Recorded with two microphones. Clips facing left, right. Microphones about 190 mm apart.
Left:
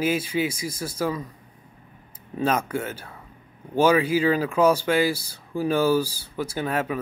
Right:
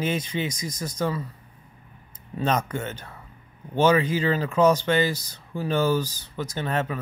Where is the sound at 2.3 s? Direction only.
5° left (ahead or behind).